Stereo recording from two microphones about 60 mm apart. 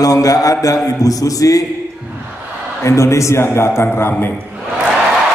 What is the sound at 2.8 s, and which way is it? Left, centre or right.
A man's voice, left.